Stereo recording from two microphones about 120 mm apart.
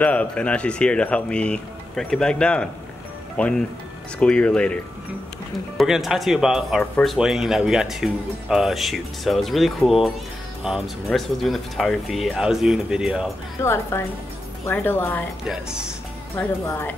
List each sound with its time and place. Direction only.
0.0 s speech: 10° left (ahead or behind)
5.8 s speech: 5° right (ahead or behind)
7.2 s speech: 5° right (ahead or behind)
13.6 s a woman's voice: 20° left (ahead or behind)
15.4 s speech: 5° right (ahead or behind)
16.6 s a woman's voice: 25° left (ahead or behind)